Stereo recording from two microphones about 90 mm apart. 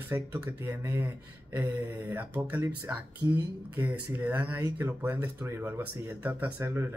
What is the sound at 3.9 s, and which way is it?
Speech, 20° right (ahead or behind).